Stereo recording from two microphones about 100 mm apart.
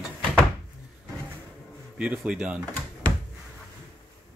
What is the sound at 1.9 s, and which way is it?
Speech, 10° right (ahead or behind).